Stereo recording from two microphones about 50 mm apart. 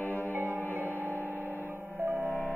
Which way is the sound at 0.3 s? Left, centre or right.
Right.